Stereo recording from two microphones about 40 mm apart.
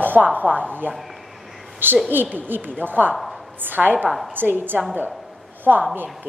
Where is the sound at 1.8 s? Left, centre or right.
Right.